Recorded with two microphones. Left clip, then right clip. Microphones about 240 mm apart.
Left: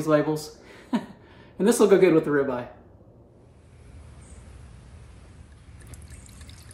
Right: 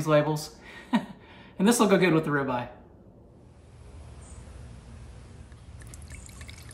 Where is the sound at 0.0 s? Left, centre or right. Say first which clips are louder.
Left 1 dB; right.